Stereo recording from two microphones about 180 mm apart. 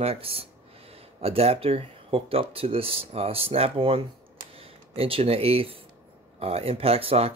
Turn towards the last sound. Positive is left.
turn(degrees=-35)  # may be behind; listen again after turning